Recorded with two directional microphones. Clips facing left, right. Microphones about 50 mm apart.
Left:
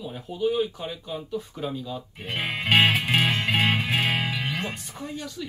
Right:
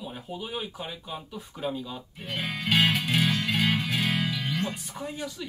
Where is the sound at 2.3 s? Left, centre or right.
Left.